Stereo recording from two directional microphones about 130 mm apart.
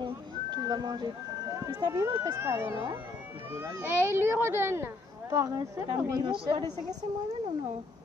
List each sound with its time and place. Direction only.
0.0 s whistling: 35° right (ahead or behind)
1.6 s speech: 25° right (ahead or behind)
6.2 s speech: 40° right (ahead or behind)